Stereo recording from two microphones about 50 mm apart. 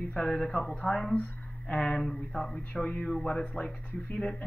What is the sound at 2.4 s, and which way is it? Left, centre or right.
Speech, centre.